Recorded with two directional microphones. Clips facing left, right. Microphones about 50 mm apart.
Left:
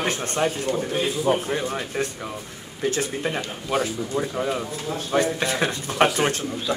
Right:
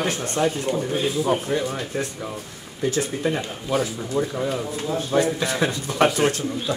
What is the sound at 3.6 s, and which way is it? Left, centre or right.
Speech, centre.